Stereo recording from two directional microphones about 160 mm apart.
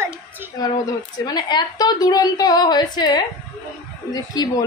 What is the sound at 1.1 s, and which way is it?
A woman's voice, 25° left (ahead or behind).